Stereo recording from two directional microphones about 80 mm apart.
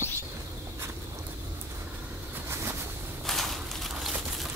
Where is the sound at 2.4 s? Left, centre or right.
Right.